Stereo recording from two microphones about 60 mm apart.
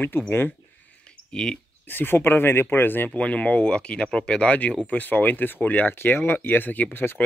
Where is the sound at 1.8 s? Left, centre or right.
Left.